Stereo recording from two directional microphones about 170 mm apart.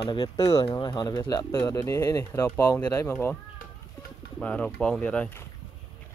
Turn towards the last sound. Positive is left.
turn(degrees=10)  # may be behind; listen again after turning